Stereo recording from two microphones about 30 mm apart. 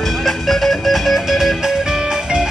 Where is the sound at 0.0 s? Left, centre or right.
Centre.